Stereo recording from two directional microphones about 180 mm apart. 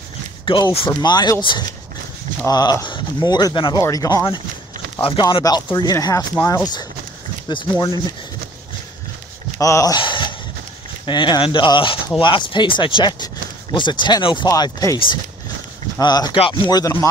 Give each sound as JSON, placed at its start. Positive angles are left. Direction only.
{"t": 0.5, "sound": "speech", "side_deg": 25}
{"t": 9.6, "sound": "a sound", "side_deg": 20}
{"t": 11.1, "sound": "speech", "side_deg": 25}